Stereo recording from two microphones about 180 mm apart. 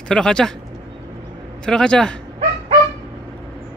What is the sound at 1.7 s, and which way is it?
Speech, 5° left (ahead or behind).